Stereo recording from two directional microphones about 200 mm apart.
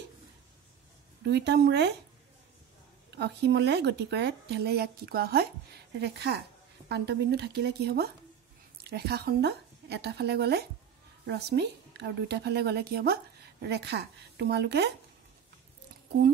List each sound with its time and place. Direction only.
1.2 s speech: 55° right (ahead or behind)
3.1 s speech: 55° right (ahead or behind)